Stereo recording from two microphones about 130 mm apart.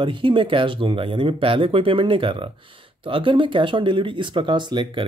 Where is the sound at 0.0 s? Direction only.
40° right (ahead or behind).